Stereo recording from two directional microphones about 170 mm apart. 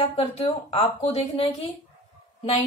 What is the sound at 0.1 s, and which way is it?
Speech, 40° left (ahead or behind).